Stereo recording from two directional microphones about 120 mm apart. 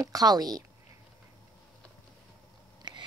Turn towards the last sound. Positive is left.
turn(degrees=-35)  # may be behind; listen again after turning